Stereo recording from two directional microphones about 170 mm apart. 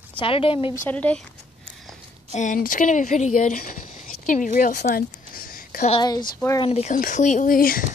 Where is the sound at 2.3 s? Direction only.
50° left (ahead or behind).